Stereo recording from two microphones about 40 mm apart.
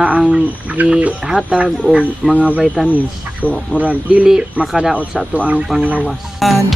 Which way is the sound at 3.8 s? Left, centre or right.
Right.